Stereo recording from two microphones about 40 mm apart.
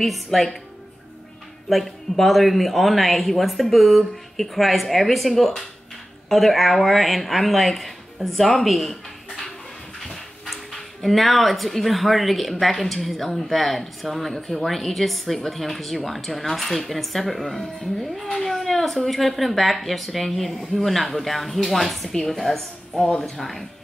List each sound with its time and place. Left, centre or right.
0.0 s speech: centre
1.7 s speech: centre
8.6 s a sound: centre
9.9 s a woman's voice: centre